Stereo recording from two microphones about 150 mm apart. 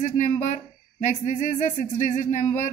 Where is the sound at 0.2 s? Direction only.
55° left (ahead or behind).